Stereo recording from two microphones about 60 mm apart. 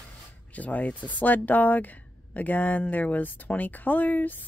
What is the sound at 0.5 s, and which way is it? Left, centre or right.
Speech, left.